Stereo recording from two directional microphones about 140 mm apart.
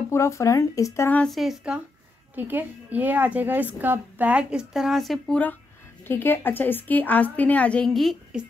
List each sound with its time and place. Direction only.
0.1 s speech: 20° left (ahead or behind)
1.2 s a woman's voice: centre (ahead or behind)
6.0 s a woman's voice: 15° left (ahead or behind)